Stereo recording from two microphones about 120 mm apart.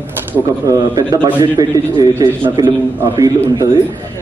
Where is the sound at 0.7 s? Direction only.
30° right (ahead or behind).